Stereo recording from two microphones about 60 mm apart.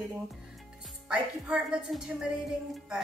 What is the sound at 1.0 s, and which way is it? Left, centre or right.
Speech, centre.